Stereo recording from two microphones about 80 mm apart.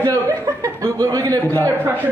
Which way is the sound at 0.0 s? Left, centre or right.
Right.